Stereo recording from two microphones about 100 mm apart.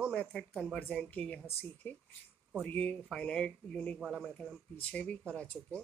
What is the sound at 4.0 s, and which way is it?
Speech, 5° right (ahead or behind).